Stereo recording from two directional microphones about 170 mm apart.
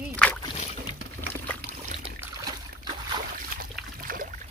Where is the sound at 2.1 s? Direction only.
25° right (ahead or behind).